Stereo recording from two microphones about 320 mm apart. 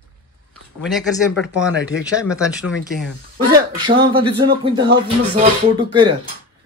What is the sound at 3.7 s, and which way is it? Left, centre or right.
Speech, centre.